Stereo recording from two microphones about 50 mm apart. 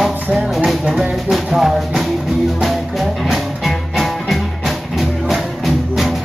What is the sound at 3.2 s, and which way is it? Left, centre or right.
Music, centre.